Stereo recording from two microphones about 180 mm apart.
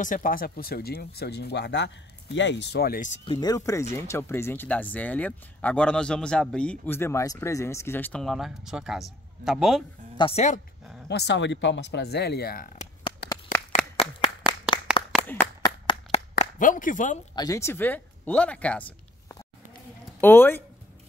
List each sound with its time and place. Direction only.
0.0 s speech: 45° left (ahead or behind)
3.3 s speech: 20° left (ahead or behind); by 9.8 s centre (ahead or behind)
10.1 s speech: 35° left (ahead or behind)
11.1 s speech: 70° left (ahead or behind)
13.2 s a sound: 65° left (ahead or behind)
15.6 s clapping: 30° left (ahead or behind)
16.5 s speech: 45° left (ahead or behind)
17.4 s speech: 15° left (ahead or behind)